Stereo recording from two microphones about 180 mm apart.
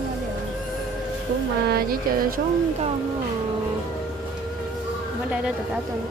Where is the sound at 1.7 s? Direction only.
55° right (ahead or behind).